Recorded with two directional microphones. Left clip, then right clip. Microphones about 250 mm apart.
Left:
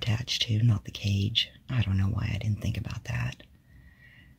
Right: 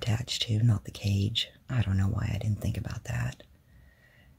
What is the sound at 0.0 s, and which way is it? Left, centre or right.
Speech, centre.